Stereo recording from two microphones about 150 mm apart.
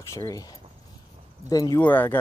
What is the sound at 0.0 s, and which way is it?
Speech, 20° left (ahead or behind).